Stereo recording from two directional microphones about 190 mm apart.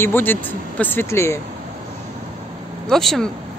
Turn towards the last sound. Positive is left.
turn(degrees=0)  # may be behind; listen again after turning